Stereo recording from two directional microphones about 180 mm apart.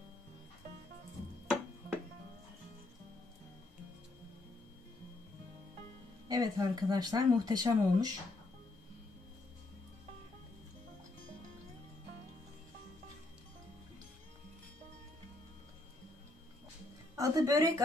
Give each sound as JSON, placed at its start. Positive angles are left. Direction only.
{"t": 6.2, "sound": "speech", "side_deg": -20}
{"t": 17.1, "sound": "a woman's voice", "side_deg": -20}